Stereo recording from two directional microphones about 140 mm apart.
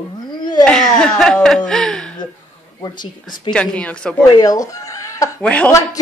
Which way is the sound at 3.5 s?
10° left (ahead or behind).